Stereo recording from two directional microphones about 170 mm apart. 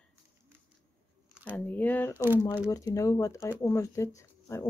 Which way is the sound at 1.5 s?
10° left (ahead or behind).